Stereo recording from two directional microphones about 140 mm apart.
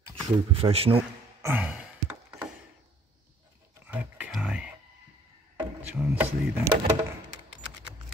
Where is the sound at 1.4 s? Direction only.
10° right (ahead or behind).